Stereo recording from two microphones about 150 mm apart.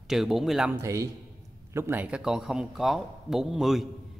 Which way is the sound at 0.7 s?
20° right (ahead or behind).